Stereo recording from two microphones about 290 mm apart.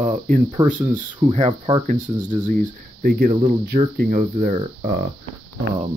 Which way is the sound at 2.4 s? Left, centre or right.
Right.